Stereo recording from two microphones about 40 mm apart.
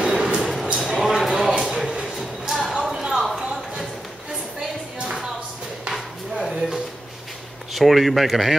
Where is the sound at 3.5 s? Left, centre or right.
Centre.